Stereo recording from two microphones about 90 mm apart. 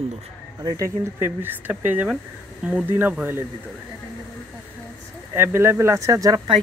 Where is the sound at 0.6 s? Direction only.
40° right (ahead or behind).